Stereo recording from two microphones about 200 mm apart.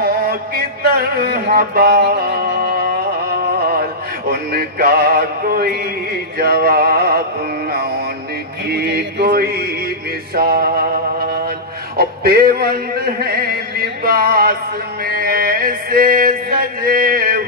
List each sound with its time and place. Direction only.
0.0 s a sound: 50° right (ahead or behind)
4.3 s music: 50° right (ahead or behind)
8.6 s music: 50° right (ahead or behind)
15.0 s mantra: 45° right (ahead or behind)